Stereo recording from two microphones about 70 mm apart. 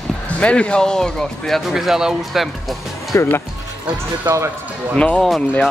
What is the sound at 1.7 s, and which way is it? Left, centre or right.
Speech, centre.